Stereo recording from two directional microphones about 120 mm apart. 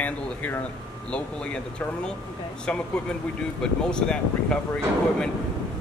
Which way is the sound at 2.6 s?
10° left (ahead or behind).